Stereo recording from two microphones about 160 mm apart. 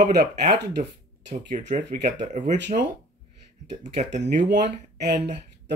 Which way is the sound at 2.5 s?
90° right.